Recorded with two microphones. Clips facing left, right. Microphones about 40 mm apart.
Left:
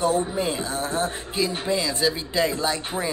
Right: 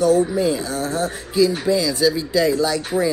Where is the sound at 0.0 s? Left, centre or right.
Left.